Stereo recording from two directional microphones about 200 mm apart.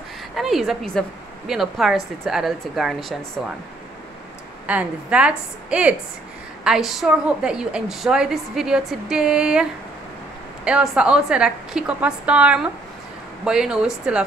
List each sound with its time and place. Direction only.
0.4 s a woman's voice: centre (ahead or behind)
4.6 s a woman's voice: 5° right (ahead or behind)